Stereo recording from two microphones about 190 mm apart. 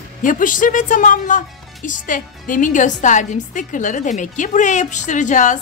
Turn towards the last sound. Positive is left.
turn(degrees=40)  # may be behind; listen again after turning